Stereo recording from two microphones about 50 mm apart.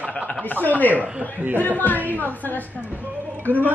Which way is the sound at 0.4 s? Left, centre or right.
Left.